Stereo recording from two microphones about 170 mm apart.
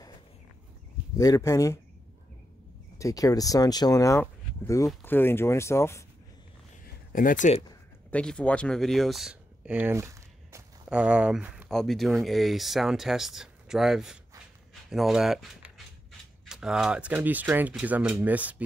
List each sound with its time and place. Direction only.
1.1 s speech: 20° left (ahead or behind)
3.0 s speech: 20° left (ahead or behind)
7.1 s speech: 55° left (ahead or behind)
8.1 s speech: 5° left (ahead or behind); by 10.6 s 15° right (ahead or behind)
10.9 s speech: 5° right (ahead or behind)